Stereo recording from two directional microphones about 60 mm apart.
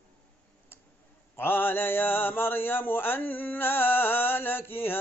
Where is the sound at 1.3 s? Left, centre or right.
Left.